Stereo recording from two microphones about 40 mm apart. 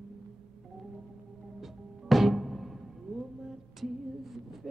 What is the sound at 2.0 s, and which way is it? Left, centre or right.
Music, centre.